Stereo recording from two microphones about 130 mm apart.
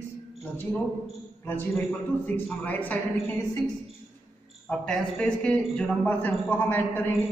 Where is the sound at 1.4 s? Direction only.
15° left (ahead or behind).